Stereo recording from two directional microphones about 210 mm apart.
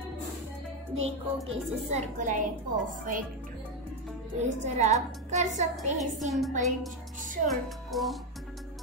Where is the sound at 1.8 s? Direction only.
35° right (ahead or behind).